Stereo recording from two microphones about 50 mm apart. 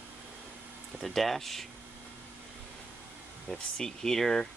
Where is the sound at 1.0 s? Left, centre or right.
Centre.